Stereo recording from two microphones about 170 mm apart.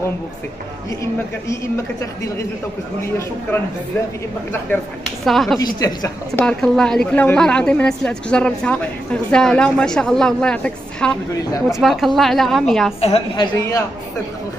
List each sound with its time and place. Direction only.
5.2 s a woman's voice: centre (ahead or behind)
5.8 s a woman's voice: 20° left (ahead or behind)
6.4 s a woman's voice: 5° left (ahead or behind)
13.0 s a woman's voice: 35° left (ahead or behind)